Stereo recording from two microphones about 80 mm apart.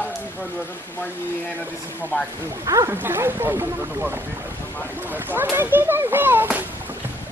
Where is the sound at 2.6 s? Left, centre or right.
Right.